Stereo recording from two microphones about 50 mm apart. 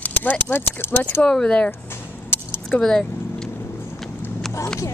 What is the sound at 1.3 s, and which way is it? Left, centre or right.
Speech, centre.